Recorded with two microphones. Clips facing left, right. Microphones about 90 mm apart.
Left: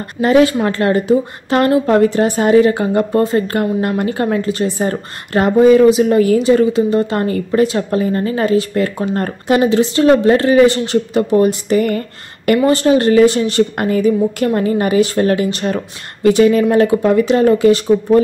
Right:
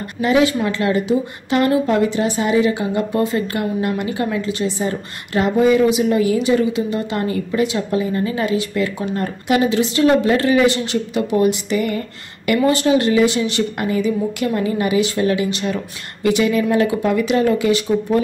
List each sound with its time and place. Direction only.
0.2 s a woman's voice: 45° left (ahead or behind)